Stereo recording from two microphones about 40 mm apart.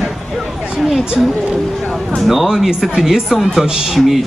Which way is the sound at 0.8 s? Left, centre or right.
Centre.